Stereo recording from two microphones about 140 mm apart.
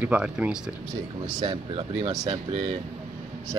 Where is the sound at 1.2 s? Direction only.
30° right (ahead or behind).